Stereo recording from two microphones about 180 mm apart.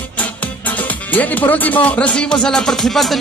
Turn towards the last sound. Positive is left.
turn(degrees=0)  # may be behind; listen again after turning